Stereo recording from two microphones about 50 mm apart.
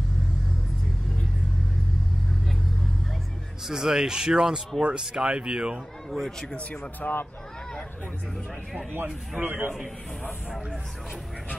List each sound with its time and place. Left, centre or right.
3.6 s a man's voice: centre
6.0 s speech: centre
6.5 s speech: left
7.0 s speech: left
9.4 s a man's voice: right